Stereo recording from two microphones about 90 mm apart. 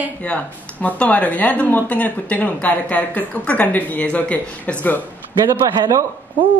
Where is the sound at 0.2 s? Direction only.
15° left (ahead or behind).